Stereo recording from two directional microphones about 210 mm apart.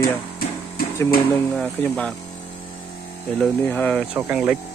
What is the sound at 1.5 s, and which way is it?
Speech, 5° left (ahead or behind).